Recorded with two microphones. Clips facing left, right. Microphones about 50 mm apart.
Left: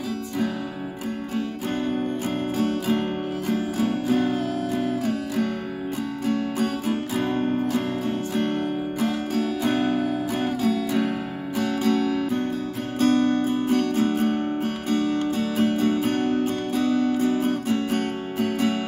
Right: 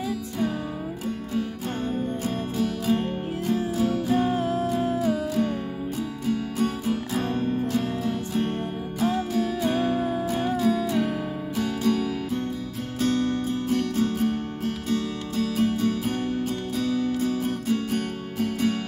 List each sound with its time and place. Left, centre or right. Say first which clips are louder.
1.9 s music: left 2 dB; left
4.2 s music: even; right
6.2 s music: left 1 dB; left
7.2 s music: left 4 dB; left
13.0 s music: left 5 dB; left
16.4 s music: left 4 dB; left